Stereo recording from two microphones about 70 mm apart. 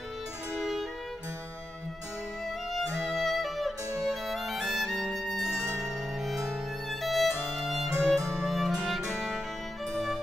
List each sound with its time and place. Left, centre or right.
0.6 s music: centre
3.2 s music: centre
5.6 s music: right
6.2 s violin: centre
7.9 s music: right
8.4 s music: centre